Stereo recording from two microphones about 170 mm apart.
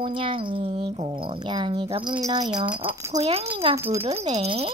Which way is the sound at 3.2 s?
35° right (ahead or behind).